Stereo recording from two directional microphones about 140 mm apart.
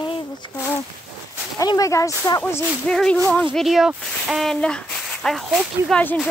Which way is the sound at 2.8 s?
5° left (ahead or behind).